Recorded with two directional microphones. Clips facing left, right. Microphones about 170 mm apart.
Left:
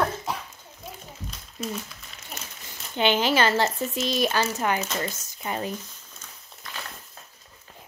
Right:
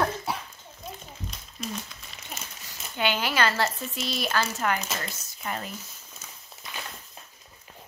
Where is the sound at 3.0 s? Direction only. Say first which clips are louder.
Left 4 dB; 25° left (ahead or behind).